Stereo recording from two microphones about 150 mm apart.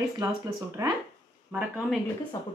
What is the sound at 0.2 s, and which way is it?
Speech, 25° right (ahead or behind).